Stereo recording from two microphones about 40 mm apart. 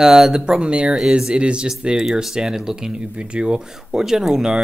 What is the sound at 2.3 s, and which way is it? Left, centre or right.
Speech, centre.